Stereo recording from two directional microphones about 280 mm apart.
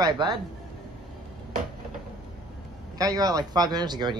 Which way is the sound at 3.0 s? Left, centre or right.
Centre.